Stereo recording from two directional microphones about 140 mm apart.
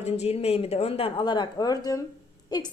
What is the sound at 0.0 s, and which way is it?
A woman's voice, 50° left (ahead or behind).